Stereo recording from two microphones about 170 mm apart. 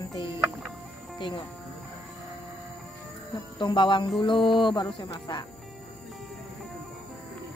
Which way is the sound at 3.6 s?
30° left (ahead or behind).